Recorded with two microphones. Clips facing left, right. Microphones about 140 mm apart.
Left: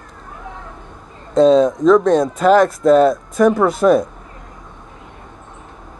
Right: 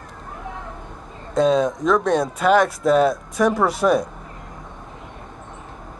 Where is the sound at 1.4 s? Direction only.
5° right (ahead or behind).